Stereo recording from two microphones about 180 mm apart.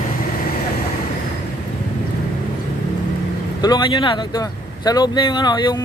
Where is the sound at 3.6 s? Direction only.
25° left (ahead or behind).